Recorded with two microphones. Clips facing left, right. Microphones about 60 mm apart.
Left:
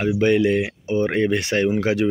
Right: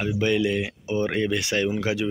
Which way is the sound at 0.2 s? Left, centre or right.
Left.